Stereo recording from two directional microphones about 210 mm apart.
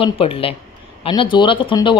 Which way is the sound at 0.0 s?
25° left (ahead or behind).